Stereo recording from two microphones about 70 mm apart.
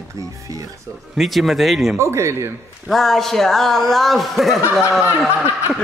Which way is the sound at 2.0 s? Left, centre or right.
Right.